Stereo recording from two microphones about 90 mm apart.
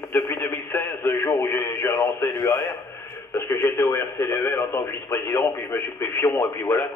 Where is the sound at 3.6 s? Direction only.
45° left (ahead or behind).